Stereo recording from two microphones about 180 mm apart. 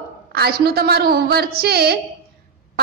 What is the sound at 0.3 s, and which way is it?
A woman's voice, 60° right (ahead or behind).